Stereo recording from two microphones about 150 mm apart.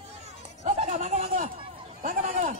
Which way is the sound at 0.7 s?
50° right (ahead or behind).